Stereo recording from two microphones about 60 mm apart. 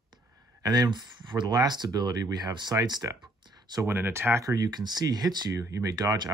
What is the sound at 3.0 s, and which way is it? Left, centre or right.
Speech, right.